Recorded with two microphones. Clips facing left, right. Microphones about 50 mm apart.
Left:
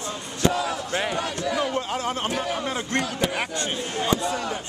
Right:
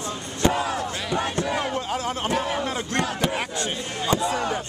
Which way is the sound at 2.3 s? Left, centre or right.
Right.